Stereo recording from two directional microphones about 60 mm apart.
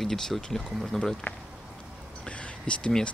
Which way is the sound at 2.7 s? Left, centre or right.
Centre.